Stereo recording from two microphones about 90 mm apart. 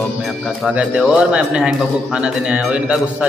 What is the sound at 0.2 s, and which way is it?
Music, centre (ahead or behind).